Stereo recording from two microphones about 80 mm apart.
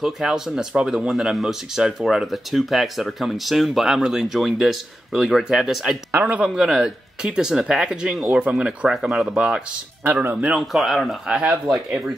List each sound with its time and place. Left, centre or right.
0.0 s speech: centre
6.1 s speech: centre
10.5 s speech: centre